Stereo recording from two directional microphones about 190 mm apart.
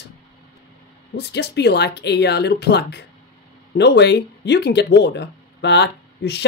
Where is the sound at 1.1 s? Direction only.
60° left (ahead or behind).